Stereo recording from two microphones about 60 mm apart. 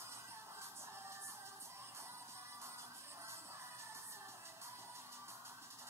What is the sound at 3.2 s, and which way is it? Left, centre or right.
Music, right.